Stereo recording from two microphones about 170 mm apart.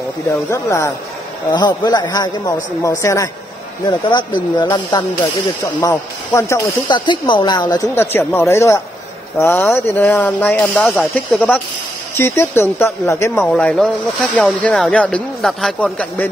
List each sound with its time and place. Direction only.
0.3 s speech: 15° left (ahead or behind)
6.9 s speech: 30° left (ahead or behind); by 16.3 s 5° left (ahead or behind)